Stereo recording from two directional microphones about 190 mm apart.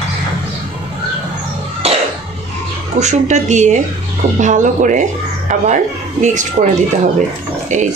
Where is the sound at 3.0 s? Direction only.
35° right (ahead or behind).